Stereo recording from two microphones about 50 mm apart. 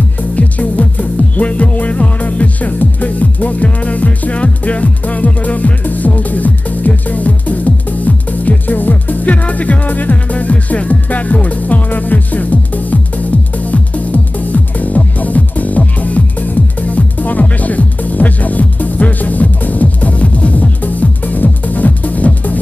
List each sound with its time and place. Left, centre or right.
0.4 s music: left